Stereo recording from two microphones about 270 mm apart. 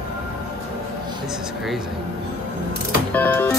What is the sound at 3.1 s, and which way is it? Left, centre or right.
Music, centre.